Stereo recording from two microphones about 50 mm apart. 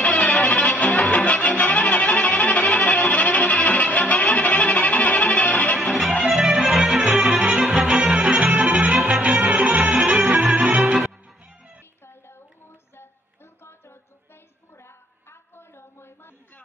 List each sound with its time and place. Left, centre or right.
0.0 s music: left
6.2 s music: centre
14.8 s a sound: left